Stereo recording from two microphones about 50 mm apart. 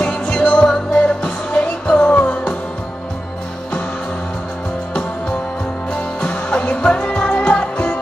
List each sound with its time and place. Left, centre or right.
0.0 s music: left
5.9 s music: left